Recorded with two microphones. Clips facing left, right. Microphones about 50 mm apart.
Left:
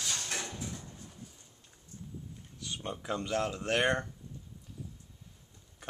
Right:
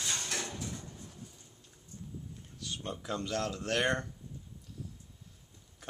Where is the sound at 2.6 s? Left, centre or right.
Centre.